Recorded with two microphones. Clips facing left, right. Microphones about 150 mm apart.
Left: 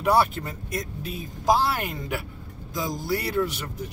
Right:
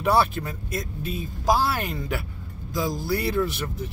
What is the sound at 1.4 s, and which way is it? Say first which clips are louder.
A man's voice: left 1 dB; 20° left (ahead or behind).